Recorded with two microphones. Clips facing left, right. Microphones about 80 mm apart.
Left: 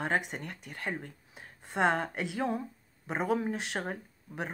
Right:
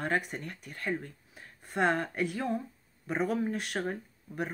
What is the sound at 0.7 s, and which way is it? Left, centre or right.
A woman's voice, left.